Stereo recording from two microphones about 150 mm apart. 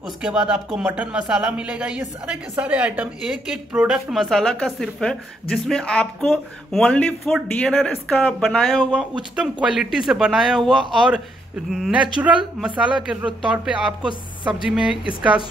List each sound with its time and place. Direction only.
0.2 s speech: 5° right (ahead or behind)
14.5 s speech: 5° right (ahead or behind)